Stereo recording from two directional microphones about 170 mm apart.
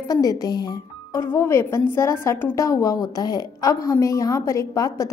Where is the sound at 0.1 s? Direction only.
20° left (ahead or behind).